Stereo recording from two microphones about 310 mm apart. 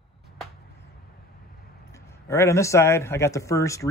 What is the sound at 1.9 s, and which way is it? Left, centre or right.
A man's voice, centre.